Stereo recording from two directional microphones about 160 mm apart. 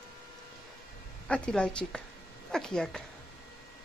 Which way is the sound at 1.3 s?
5° left (ahead or behind).